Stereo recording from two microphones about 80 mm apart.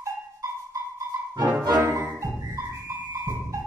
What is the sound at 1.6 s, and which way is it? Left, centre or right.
Music, right.